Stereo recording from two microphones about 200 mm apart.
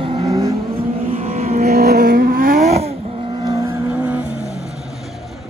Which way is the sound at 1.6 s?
50° right (ahead or behind).